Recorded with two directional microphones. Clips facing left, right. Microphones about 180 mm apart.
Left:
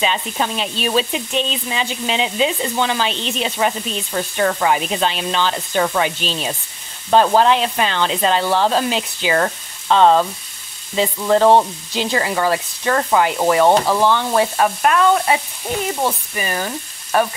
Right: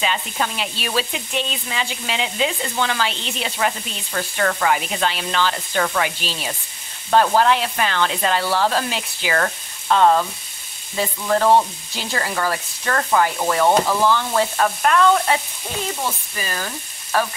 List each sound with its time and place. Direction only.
0.0 s sizzle: 25° left (ahead or behind)
13.7 s stir: 20° left (ahead or behind)
16.3 s frying: 20° left (ahead or behind)